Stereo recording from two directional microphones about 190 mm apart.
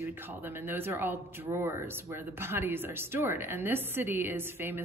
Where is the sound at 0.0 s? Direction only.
10° right (ahead or behind).